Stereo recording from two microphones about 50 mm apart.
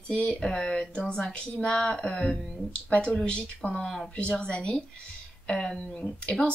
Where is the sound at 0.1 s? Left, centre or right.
Left.